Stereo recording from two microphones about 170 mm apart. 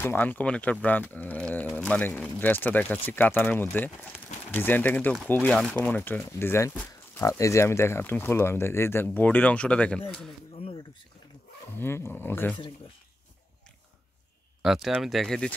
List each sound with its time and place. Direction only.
0.0 s speech: 10° left (ahead or behind)
10.6 s a sound: 30° left (ahead or behind)
11.7 s speech: 15° left (ahead or behind)
14.6 s speech: centre (ahead or behind)